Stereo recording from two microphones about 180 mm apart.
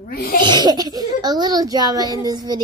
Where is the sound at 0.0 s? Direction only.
55° left (ahead or behind).